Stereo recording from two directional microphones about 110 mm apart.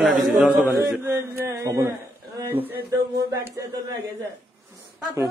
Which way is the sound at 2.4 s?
20° right (ahead or behind).